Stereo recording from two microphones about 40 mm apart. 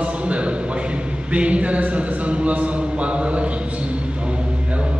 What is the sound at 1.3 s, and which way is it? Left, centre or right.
Speech, right.